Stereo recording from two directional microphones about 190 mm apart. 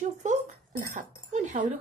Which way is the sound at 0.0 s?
40° right (ahead or behind).